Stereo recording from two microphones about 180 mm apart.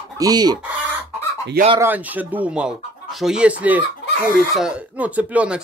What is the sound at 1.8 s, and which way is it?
Speech, 10° right (ahead or behind).